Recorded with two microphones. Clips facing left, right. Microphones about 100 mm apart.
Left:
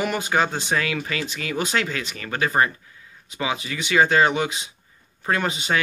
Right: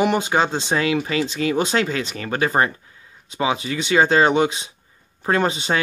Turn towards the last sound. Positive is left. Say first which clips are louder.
# right 4 dB
turn(degrees=-30)  # may be behind; listen again after turning